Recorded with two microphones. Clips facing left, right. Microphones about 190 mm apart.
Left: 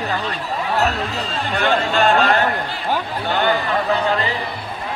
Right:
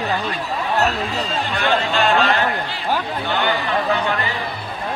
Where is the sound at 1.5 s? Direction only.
45° left (ahead or behind).